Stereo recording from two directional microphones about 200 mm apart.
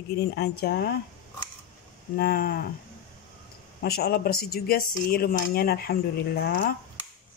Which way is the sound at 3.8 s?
50° left (ahead or behind).